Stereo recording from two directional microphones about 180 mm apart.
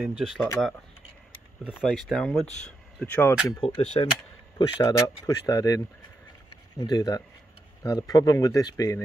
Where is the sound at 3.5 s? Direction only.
30° left (ahead or behind).